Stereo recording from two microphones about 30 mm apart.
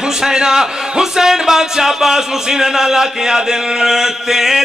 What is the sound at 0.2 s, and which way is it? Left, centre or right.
Speech, right.